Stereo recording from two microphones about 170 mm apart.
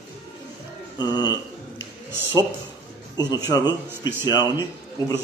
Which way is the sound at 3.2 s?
20° left (ahead or behind).